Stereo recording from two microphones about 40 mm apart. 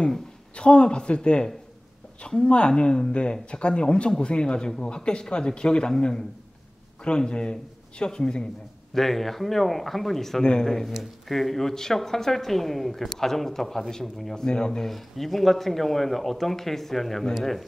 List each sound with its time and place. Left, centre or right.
0.6 s speech: left
8.9 s speech: centre
10.4 s speech: left
11.2 s speech: centre
14.3 s speech: centre
14.8 s speech: centre